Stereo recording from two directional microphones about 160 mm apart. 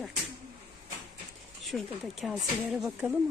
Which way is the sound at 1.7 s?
Centre (ahead or behind).